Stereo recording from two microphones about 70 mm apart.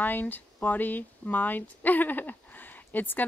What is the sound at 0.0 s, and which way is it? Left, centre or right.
Speech, left.